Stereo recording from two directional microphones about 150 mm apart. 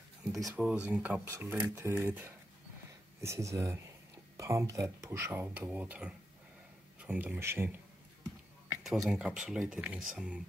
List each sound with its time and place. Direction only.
0.6 s speech: 10° right (ahead or behind)
8.8 s speech: 5° right (ahead or behind)